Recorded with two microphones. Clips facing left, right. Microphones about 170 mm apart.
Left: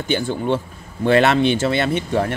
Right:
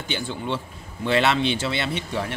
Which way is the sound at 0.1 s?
50° left (ahead or behind).